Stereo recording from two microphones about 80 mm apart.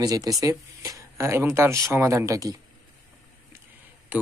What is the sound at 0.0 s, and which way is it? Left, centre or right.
Speech, right.